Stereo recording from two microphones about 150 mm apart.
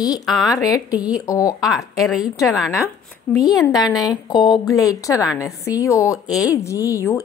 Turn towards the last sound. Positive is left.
turn(degrees=20)  # may be behind; listen again after turning